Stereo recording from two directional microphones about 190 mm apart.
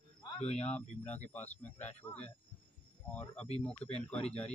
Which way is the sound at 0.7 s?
10° left (ahead or behind).